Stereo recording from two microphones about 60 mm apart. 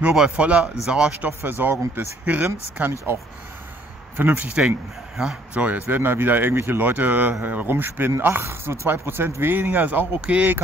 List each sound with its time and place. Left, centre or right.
0.0 s a man's voice: centre
1.4 s speech: right
4.2 s speech: right
4.6 s a man's voice: centre
5.5 s speech: right